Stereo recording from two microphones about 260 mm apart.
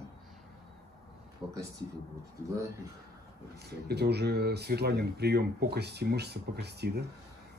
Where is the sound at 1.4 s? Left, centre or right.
Centre.